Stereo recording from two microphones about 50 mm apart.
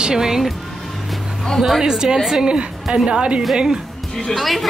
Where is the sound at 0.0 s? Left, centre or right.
Centre.